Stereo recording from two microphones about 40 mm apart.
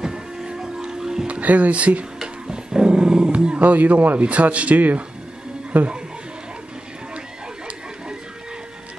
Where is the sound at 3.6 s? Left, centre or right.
Right.